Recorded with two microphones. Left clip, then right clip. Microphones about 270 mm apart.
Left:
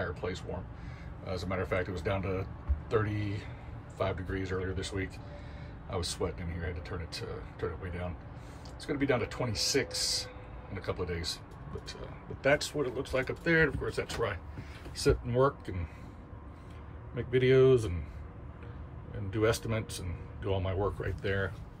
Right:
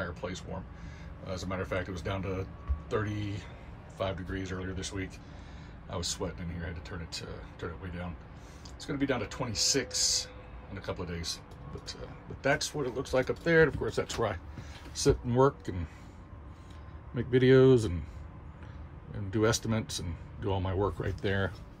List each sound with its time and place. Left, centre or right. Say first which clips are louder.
0.0 s a sound: left 1 dB; centre
1.2 s speech: left 1 dB; centre
17.1 s speech: right 2 dB; centre
19.3 s speech: right 1 dB; centre